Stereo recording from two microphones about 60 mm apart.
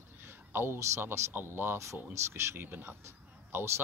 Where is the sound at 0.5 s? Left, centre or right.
Right.